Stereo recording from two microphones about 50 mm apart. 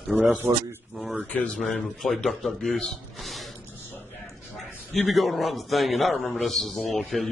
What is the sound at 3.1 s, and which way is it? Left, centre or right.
Music, centre.